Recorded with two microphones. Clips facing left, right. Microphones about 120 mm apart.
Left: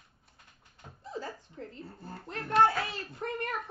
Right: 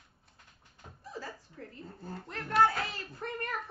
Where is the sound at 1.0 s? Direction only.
25° left (ahead or behind).